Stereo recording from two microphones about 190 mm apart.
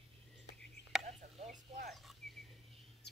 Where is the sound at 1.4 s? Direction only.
35° right (ahead or behind).